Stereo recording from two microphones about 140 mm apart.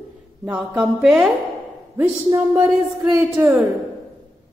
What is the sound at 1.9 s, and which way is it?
A woman's voice, 15° right (ahead or behind).